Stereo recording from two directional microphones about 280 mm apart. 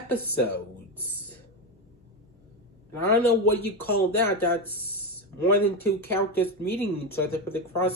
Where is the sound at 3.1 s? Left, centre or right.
Centre.